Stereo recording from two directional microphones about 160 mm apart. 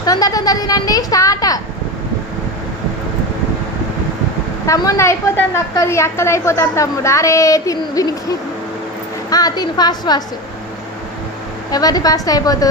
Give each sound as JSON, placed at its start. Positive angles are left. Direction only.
{"t": 0.0, "sound": "a woman's voice", "side_deg": 25}
{"t": 4.6, "sound": "a woman's voice", "side_deg": 20}
{"t": 9.3, "sound": "a woman's voice", "side_deg": 25}
{"t": 11.7, "sound": "a woman's voice", "side_deg": 25}